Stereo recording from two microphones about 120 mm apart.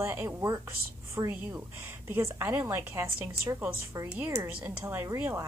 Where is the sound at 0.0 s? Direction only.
20° right (ahead or behind).